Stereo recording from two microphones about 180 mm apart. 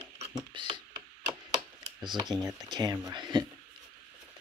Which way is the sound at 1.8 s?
25° right (ahead or behind).